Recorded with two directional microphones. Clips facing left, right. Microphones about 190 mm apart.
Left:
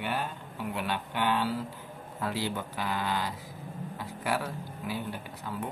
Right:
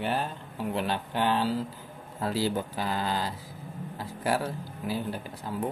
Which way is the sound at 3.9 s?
35° right (ahead or behind).